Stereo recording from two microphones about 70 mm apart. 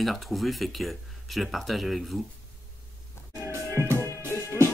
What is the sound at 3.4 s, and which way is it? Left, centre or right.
Music, right.